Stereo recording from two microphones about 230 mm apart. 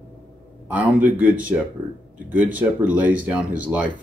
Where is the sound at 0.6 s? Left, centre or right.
Centre.